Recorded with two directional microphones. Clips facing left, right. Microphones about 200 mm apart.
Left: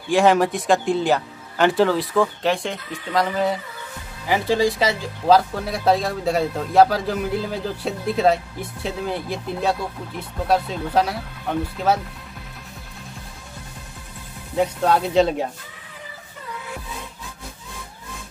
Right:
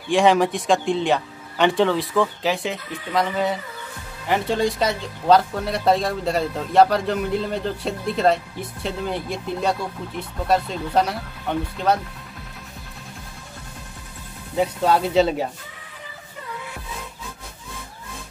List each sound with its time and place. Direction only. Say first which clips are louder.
0.1 s speech: even; centre (ahead or behind)
14.5 s speech: even; centre (ahead or behind)